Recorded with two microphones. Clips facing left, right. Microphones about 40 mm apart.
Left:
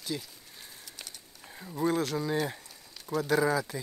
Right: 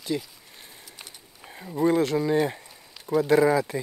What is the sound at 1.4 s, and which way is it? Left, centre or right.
Speech, right.